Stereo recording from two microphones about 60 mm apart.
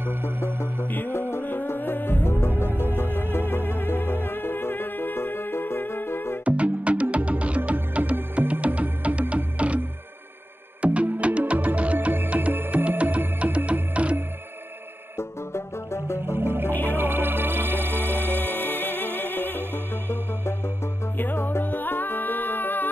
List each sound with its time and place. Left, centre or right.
0.0 s music: right
0.8 s music: left
2.7 s music: right
3.0 s music: left
6.4 s music: right
10.8 s music: right
15.1 s music: left
16.3 s music: right
18.8 s music: left